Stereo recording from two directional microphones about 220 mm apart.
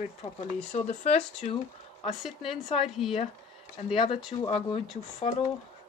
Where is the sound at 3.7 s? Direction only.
30° left (ahead or behind).